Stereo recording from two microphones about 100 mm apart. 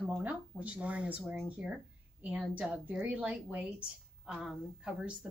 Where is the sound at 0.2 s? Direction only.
15° right (ahead or behind).